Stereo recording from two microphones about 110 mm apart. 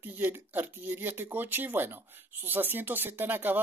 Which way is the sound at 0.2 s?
15° right (ahead or behind).